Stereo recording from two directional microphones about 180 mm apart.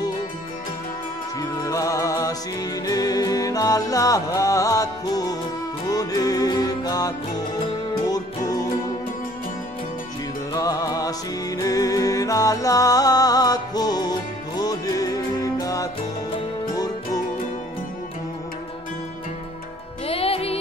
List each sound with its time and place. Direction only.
1.6 s music: 15° left (ahead or behind)
10.5 s music: 20° left (ahead or behind)
20.1 s music: 30° left (ahead or behind)